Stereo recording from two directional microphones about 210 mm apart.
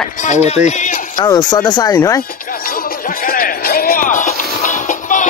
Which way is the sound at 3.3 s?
45° left (ahead or behind).